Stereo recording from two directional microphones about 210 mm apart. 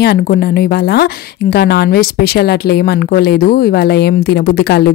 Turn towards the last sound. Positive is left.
turn(degrees=50)  # may be behind; listen again after turning